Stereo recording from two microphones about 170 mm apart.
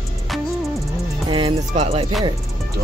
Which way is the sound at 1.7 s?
40° right (ahead or behind).